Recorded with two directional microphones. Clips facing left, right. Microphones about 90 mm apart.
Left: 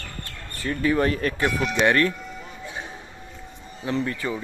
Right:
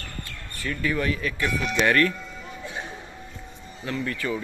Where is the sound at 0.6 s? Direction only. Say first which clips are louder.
Left 5 dB; 30° left (ahead or behind).